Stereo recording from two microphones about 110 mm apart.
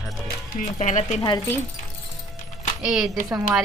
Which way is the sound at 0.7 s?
90° left.